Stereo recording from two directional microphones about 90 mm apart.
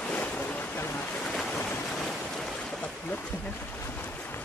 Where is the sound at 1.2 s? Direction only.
10° left (ahead or behind).